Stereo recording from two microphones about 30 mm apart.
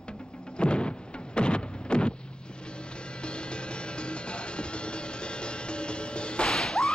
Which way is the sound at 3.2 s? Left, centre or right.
Left.